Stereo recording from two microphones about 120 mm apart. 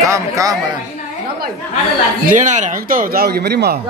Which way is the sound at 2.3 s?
90° right.